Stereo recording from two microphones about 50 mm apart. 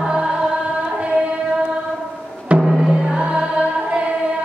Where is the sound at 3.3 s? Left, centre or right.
Right.